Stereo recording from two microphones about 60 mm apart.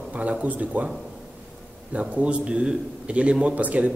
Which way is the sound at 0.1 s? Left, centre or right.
Right.